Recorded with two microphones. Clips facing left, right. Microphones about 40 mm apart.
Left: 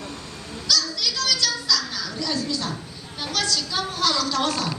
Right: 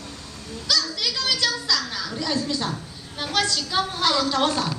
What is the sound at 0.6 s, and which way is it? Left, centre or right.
Children playing, right.